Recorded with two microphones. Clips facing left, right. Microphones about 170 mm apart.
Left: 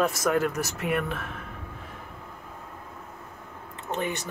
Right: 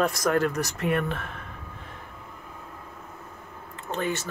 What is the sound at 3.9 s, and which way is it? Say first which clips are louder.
Speech: right 1 dB; 15° left (ahead or behind).